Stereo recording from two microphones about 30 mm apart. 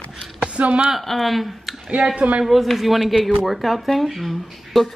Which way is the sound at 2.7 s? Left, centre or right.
Centre.